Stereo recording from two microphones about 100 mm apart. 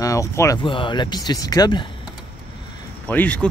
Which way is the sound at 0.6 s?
55° left (ahead or behind).